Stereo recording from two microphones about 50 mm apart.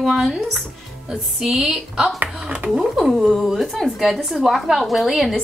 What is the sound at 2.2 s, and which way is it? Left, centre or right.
Speech, centre.